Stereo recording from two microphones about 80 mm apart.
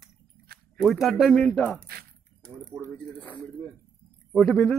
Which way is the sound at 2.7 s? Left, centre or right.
Right.